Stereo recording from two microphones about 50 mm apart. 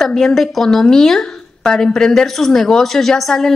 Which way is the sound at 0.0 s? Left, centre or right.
Centre.